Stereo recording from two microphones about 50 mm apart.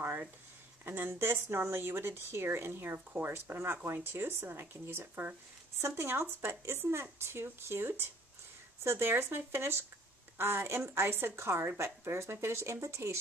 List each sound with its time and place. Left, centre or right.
0.0 s a sound: right
0.8 s speech: right
5.8 s speech: right